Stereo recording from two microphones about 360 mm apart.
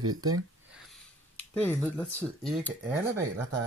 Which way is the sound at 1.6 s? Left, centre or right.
Centre.